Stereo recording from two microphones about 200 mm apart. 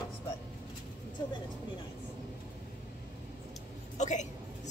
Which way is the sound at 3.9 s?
35° left (ahead or behind).